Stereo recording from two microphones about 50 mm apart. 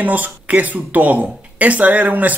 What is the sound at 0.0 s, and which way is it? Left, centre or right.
Speech, right.